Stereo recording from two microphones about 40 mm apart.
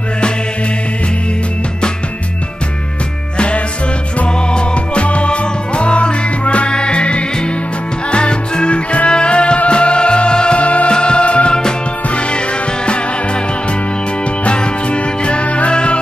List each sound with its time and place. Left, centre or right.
3.3 s music: left
14.4 s music: left